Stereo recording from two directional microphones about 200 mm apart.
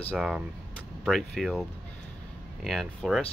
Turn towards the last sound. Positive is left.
turn(degrees=0)  # may be behind; listen again after turning